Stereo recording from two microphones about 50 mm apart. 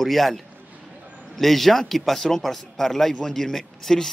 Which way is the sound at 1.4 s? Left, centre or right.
Centre.